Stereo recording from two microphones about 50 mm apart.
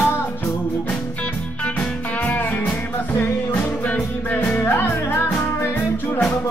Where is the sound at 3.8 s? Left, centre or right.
Left.